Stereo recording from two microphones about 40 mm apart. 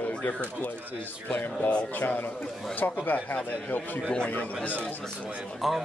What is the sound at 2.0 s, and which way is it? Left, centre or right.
Speech, left.